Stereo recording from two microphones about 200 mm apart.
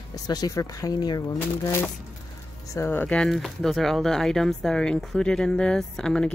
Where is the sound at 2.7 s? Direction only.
10° left (ahead or behind).